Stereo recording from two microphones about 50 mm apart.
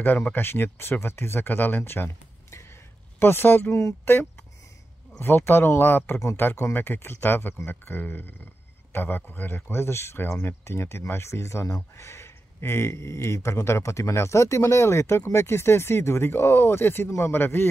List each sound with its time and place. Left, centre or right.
0.3 s speech: left
3.2 s speech: left